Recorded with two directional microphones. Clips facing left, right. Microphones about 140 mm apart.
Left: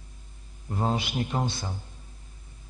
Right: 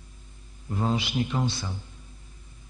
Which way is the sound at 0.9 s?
50° left (ahead or behind).